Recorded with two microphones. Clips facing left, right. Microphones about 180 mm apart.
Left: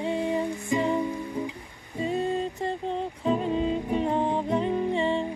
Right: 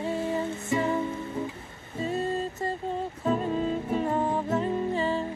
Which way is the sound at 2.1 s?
5° right (ahead or behind).